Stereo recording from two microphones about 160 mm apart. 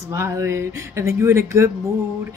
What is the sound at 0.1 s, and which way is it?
A woman's voice, 15° right (ahead or behind).